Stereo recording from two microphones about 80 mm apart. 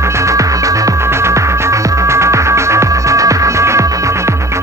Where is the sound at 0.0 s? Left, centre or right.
Right.